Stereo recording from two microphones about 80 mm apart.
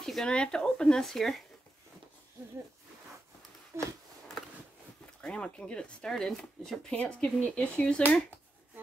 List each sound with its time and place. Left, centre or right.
0.0 s speech: centre
3.7 s a sound: right
5.2 s speech: centre